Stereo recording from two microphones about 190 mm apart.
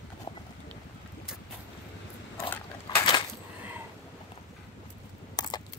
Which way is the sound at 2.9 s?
25° left (ahead or behind).